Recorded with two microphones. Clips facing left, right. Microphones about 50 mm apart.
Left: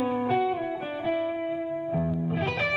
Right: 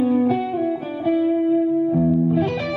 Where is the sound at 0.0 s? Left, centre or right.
Centre.